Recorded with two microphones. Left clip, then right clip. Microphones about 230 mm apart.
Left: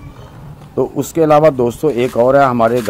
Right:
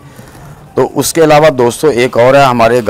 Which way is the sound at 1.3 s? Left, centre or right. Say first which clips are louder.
Right 1 dB; right.